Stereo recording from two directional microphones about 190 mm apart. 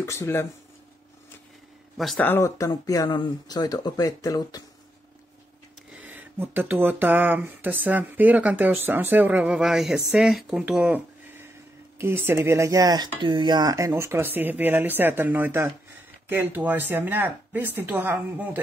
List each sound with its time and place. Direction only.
0.0 s speech: 15° left (ahead or behind)
2.0 s speech: 5° left (ahead or behind); by 4.6 s 20° left (ahead or behind)
6.1 s speech: 10° right (ahead or behind)